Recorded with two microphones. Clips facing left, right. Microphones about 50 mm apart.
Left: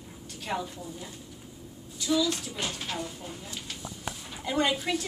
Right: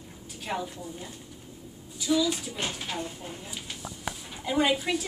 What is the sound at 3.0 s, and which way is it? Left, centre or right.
Speech, right.